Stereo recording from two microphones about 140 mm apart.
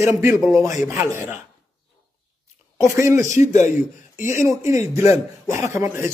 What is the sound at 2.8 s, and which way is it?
Speech, 20° right (ahead or behind).